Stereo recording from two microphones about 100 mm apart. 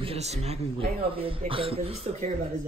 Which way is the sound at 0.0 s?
85° right.